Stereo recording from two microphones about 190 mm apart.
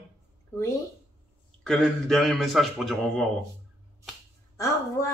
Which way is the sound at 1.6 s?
5° left (ahead or behind).